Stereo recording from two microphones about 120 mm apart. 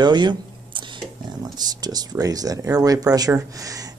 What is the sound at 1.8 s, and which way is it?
Speech, 35° right (ahead or behind).